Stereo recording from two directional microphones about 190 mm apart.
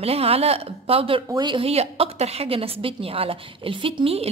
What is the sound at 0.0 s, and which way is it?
A woman's voice, 30° right (ahead or behind).